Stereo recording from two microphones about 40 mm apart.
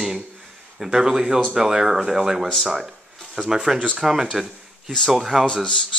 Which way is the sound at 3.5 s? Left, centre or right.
Centre.